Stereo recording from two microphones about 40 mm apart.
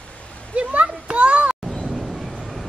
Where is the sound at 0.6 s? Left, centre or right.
Right.